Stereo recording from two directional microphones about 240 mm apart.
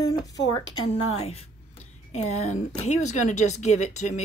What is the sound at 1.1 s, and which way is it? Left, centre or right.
Speech, left.